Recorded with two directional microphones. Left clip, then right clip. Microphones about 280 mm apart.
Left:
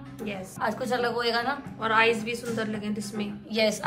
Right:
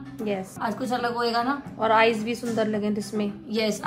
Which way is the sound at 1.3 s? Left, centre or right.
Centre.